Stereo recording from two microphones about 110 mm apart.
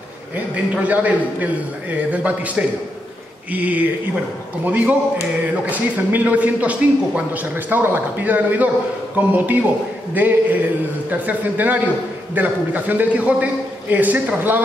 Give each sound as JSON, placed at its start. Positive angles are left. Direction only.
{"t": 0.8, "sound": "a man's voice", "side_deg": -15}